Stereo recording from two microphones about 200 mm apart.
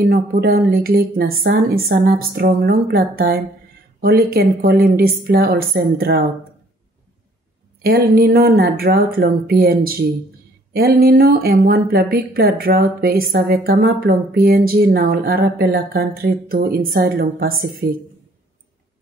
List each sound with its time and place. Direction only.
0.1 s speech: 50° right (ahead or behind)
7.8 s speech: 50° right (ahead or behind)